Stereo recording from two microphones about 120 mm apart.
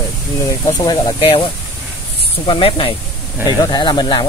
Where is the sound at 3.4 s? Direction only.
35° left (ahead or behind).